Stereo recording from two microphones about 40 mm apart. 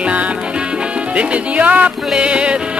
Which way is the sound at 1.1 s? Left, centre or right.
Right.